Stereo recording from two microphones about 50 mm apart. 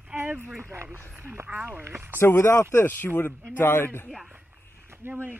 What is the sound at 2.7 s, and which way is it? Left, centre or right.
Speech, left.